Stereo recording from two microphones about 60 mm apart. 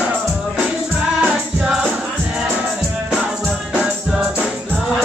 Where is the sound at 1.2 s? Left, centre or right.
Centre.